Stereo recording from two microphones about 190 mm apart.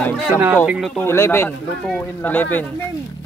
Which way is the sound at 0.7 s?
Centre (ahead or behind).